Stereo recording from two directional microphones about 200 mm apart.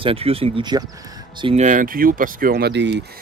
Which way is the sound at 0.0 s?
30° right (ahead or behind).